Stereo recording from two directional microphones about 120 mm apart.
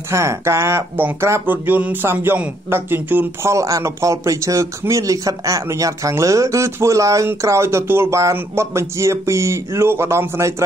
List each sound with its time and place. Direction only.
0.1 s speech: 25° right (ahead or behind)